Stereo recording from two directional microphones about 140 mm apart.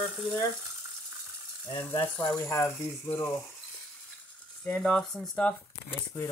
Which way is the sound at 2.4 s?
20° left (ahead or behind).